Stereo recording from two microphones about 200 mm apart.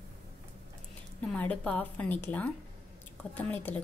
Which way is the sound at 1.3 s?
5° left (ahead or behind).